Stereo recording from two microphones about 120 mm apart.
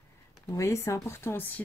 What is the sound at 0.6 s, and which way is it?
Speech, 25° left (ahead or behind).